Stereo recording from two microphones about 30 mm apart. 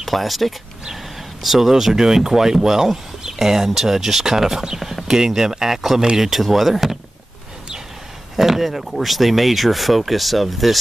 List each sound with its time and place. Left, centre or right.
0.0 s speech: centre
2.0 s speech: centre
8.4 s speech: centre